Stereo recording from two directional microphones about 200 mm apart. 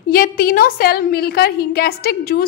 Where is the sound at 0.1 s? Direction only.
45° left (ahead or behind).